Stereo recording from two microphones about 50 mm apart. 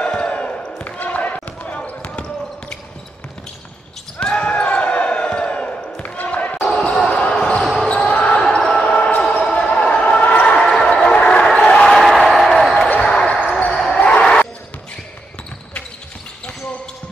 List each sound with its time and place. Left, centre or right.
0.0 s basketball bounce: left
2.0 s basketball bounce: centre
4.2 s basketball bounce: left
6.6 s basketball bounce: centre
7.9 s basketball bounce: left
8.4 s basketball bounce: centre
8.8 s basketball bounce: left
10.7 s music: centre
11.1 s crowd: centre
12.0 s a sound: centre
13.0 s basketball bounce: centre
13.9 s a sound: left